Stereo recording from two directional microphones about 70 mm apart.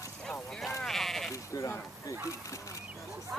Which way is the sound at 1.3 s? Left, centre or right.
Left.